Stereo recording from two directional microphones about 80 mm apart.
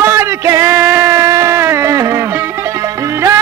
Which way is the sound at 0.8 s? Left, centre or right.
Right.